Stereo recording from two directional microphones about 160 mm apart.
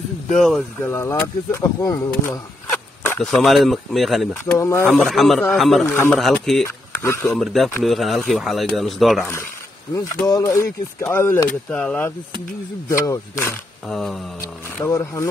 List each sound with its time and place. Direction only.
0.4 s speech: centre (ahead or behind)
0.8 s speech: 15° left (ahead or behind)
3.2 s speech: centre (ahead or behind)
4.6 s speech: 20° left (ahead or behind)
4.8 s speech: centre (ahead or behind)
9.9 s speech: 20° left (ahead or behind)
12.8 s speech: 20° left (ahead or behind)
13.8 s speech: centre (ahead or behind)
14.4 s speech: 20° left (ahead or behind)